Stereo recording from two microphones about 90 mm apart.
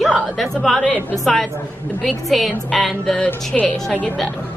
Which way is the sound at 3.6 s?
15° left (ahead or behind).